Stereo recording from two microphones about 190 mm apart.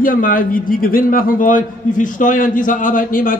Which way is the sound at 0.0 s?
45° left (ahead or behind).